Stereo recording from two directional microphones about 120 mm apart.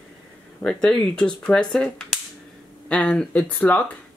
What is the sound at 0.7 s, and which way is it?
Speech, 10° left (ahead or behind).